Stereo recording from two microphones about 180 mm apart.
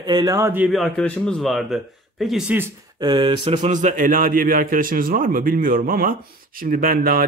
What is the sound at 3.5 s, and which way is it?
A man's voice, 40° right (ahead or behind).